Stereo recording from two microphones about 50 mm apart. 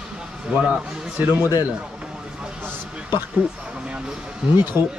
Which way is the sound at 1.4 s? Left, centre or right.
Right.